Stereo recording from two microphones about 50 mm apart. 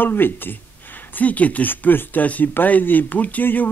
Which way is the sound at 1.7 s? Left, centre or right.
Left.